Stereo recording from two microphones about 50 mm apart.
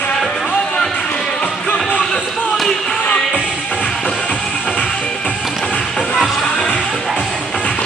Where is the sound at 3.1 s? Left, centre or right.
Centre.